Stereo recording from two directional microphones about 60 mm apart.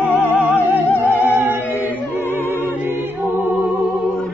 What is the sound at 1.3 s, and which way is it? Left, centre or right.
Music, right.